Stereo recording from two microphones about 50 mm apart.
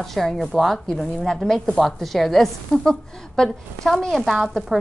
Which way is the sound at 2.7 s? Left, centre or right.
Centre.